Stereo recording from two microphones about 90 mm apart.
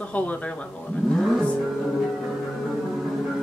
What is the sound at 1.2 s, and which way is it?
Vehicle, 10° left (ahead or behind).